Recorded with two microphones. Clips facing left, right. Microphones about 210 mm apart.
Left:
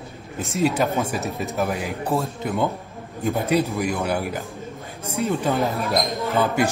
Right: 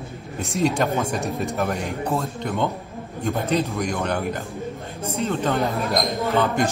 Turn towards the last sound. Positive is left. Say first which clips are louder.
# even
turn(degrees=10)  # may be behind; listen again after turning